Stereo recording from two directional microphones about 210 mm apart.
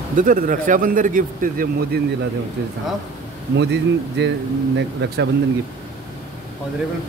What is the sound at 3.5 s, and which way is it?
Speech, 55° right (ahead or behind).